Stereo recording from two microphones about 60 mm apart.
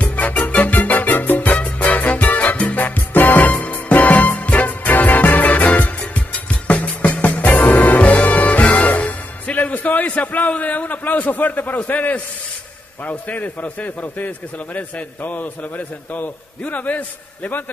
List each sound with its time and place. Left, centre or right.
0.0 s music: left
13.0 s a man's voice: left